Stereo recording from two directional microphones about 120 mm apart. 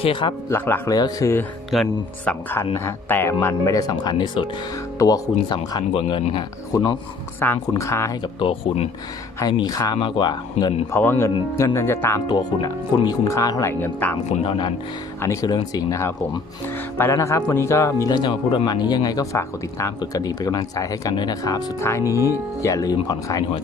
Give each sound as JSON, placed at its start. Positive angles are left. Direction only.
{"t": 0.0, "sound": "speech", "side_deg": 45}
{"t": 0.5, "sound": "speech", "side_deg": 20}
{"t": 0.8, "sound": "speech", "side_deg": 30}
{"t": 1.7, "sound": "speech", "side_deg": 0}
{"t": 2.6, "sound": "speech", "side_deg": 20}
{"t": 7.4, "sound": "speech", "side_deg": 20}
{"t": 8.4, "sound": "speech", "side_deg": 50}
{"t": 9.4, "sound": "speech", "side_deg": 35}
{"t": 9.9, "sound": "speech", "side_deg": 45}
{"t": 10.9, "sound": "speech", "side_deg": 20}
{"t": 12.3, "sound": "speech", "side_deg": 35}
{"t": 14.4, "sound": "speech", "side_deg": 45}
{"t": 15.4, "sound": "speech", "side_deg": 30}
{"t": 18.0, "sound": "speech", "side_deg": 40}